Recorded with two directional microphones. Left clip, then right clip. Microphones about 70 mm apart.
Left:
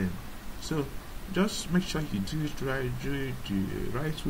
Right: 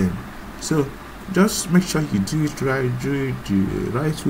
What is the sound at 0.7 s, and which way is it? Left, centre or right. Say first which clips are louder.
Speech: right 11 dB; centre.